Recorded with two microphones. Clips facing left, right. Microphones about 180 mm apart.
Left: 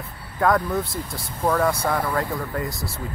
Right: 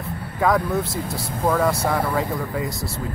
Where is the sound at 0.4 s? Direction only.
Centre (ahead or behind).